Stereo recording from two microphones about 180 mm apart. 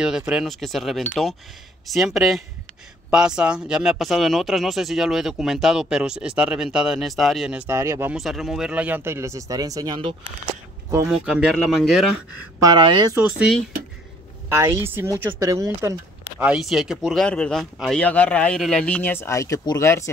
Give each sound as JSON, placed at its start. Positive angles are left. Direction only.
{"t": 0.3, "sound": "speech", "side_deg": 0}
{"t": 8.2, "sound": "speech", "side_deg": 0}
{"t": 11.1, "sound": "speech", "side_deg": -5}
{"t": 12.5, "sound": "a woman's voice", "side_deg": -25}
{"t": 13.1, "sound": "speech", "side_deg": -5}
{"t": 14.5, "sound": "speech", "side_deg": -15}
{"t": 16.3, "sound": "speech", "side_deg": -5}